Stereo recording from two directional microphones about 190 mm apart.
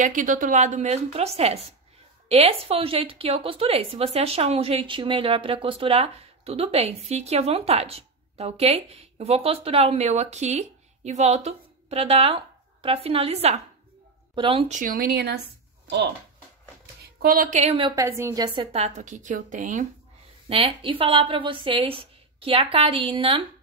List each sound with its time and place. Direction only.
0.0 s a woman's voice: 45° right (ahead or behind)
14.8 s speech: 50° right (ahead or behind)
17.2 s a woman's voice: 50° right (ahead or behind); by 18.0 s 25° right (ahead or behind)
18.0 s a woman's voice: 15° right (ahead or behind); by 19.9 s 40° right (ahead or behind)
20.4 s a woman's voice: 30° right (ahead or behind)